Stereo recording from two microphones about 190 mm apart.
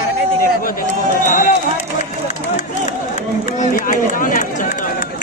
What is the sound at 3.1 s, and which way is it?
Run, 40° left (ahead or behind).